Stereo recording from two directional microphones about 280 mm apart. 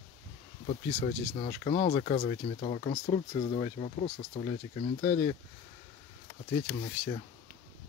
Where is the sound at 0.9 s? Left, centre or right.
Left.